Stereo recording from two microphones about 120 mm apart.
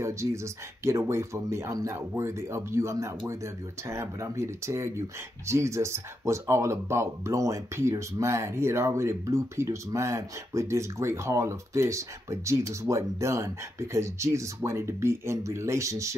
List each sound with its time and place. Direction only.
0.0 s speech: 25° right (ahead or behind)